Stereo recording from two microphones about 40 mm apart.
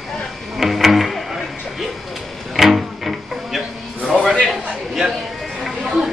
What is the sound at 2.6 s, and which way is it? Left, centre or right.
Music, centre.